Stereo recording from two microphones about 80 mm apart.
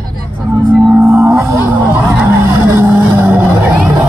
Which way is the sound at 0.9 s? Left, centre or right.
Right.